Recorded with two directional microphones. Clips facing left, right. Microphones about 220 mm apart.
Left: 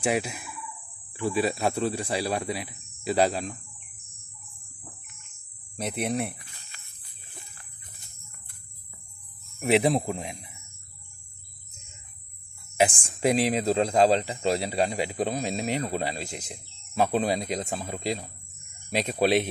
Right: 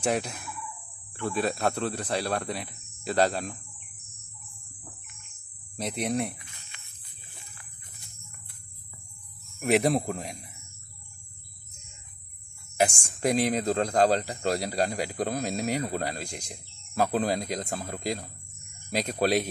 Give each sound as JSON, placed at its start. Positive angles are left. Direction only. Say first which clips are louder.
{"t": 0.0, "sound": "speech", "louder": "left 1 dB", "side_deg": 5}
{"t": 5.8, "sound": "speech", "louder": "even", "side_deg": 5}
{"t": 6.3, "sound": "a sound", "louder": "even", "side_deg": 35}
{"t": 9.7, "sound": "speech", "louder": "left 1 dB", "side_deg": 0}
{"t": 13.2, "sound": "speech", "louder": "left 2 dB", "side_deg": 5}